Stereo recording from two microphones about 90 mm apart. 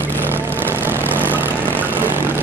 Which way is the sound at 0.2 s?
25° right (ahead or behind).